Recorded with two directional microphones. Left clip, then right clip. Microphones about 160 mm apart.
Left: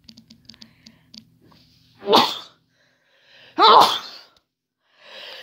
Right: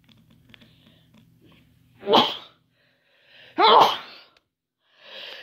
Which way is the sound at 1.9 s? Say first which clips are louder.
Left 2 dB; 40° left (ahead or behind).